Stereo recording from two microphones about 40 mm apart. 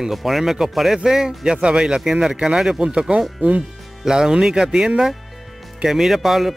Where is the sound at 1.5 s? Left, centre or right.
Right.